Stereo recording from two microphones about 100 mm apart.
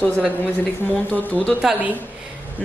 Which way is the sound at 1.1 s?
15° left (ahead or behind).